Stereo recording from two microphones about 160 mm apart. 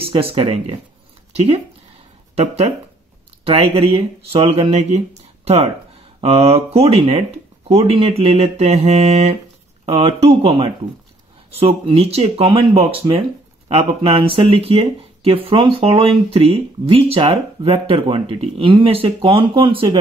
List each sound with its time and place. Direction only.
0.1 s speech: 35° right (ahead or behind)
2.3 s speech: 40° right (ahead or behind)